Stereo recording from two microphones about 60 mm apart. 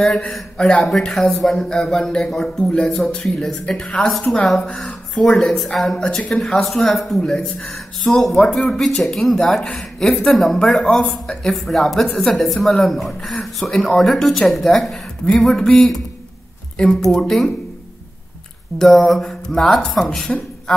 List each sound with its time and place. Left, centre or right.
0.0 s a man's voice: centre
6.6 s a man's voice: centre
18.8 s speech: centre